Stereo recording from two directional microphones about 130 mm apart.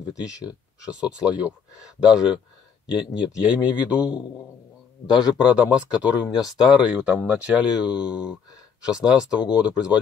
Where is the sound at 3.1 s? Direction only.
35° left (ahead or behind).